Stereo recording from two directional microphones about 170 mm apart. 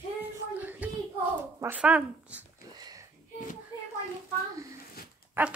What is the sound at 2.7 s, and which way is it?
Sniff, 25° right (ahead or behind).